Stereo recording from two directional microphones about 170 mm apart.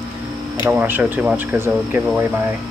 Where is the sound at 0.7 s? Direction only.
10° right (ahead or behind).